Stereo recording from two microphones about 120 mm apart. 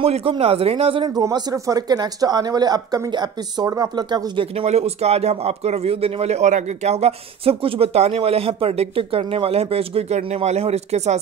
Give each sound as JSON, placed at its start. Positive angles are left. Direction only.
{"t": 0.0, "sound": "speech", "side_deg": -55}
{"t": 1.1, "sound": "speech", "side_deg": -30}
{"t": 4.6, "sound": "speech", "side_deg": -60}